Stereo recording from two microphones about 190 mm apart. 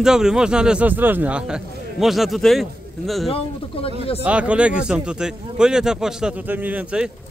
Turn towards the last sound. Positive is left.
turn(degrees=-5)  # may be behind; listen again after turning